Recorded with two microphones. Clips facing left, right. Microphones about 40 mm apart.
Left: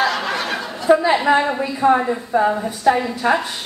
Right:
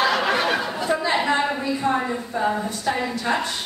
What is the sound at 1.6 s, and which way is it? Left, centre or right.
Speech, centre.